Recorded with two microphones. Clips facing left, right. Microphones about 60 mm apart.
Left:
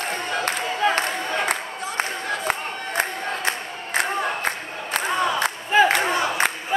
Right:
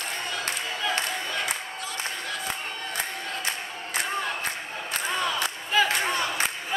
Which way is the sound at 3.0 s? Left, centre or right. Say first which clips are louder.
Left 9 dB; left.